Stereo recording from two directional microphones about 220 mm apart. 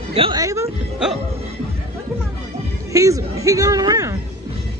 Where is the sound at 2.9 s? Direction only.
15° right (ahead or behind).